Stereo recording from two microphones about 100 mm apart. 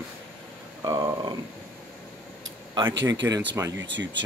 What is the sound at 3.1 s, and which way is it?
Speech, 35° right (ahead or behind).